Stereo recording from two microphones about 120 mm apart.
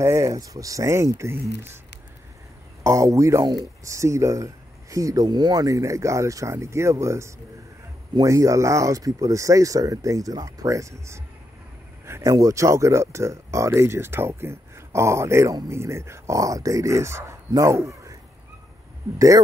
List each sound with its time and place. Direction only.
0.0 s speech: 25° right (ahead or behind)
2.8 s speech: 25° right (ahead or behind)
19.1 s speech: 25° right (ahead or behind)